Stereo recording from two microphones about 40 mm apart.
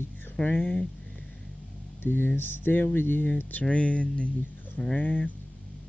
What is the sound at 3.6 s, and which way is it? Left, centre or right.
Speech, left.